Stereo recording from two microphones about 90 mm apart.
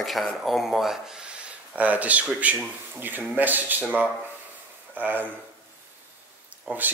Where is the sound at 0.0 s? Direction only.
Centre (ahead or behind); by 5.2 s 20° right (ahead or behind).